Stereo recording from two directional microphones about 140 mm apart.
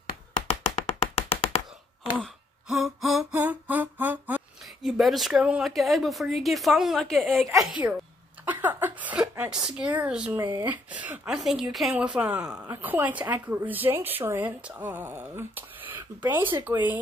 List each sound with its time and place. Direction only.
0.5 s a sound: 50° left (ahead or behind)
2.7 s a sound: centre (ahead or behind)
3.3 s music: 10° right (ahead or behind)
4.8 s a woman's voice: centre (ahead or behind)
7.8 s speech: 15° right (ahead or behind)
10.3 s speech: 20° right (ahead or behind)
10.7 s a woman's voice: 10° right (ahead or behind)